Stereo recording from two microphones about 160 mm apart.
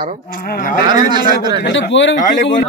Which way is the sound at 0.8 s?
25° right (ahead or behind).